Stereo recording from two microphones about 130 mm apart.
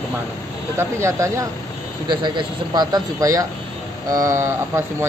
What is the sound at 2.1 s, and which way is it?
Speech, 35° right (ahead or behind).